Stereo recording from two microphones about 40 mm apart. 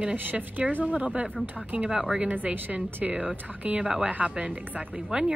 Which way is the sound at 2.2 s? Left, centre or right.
Right.